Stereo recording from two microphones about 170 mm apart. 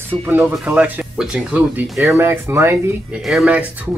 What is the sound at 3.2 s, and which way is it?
Speech, centre (ahead or behind).